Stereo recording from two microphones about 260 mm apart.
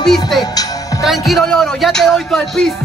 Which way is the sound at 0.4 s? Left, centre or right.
Centre.